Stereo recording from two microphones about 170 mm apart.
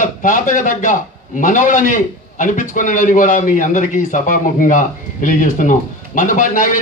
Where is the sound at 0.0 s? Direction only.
50° left (ahead or behind).